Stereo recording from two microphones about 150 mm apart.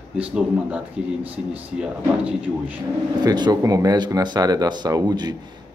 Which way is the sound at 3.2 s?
25° right (ahead or behind).